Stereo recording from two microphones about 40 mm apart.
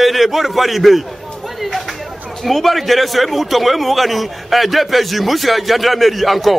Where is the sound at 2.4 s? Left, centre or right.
Centre.